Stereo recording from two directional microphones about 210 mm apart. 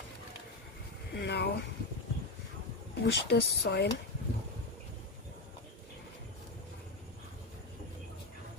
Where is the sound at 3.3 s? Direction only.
55° left (ahead or behind).